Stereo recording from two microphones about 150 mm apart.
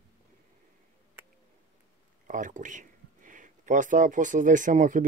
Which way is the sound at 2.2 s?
60° right (ahead or behind).